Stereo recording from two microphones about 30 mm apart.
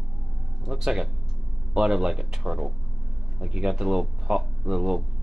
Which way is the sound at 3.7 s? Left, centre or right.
Centre.